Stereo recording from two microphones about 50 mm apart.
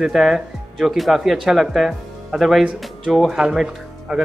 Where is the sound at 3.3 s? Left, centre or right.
Centre.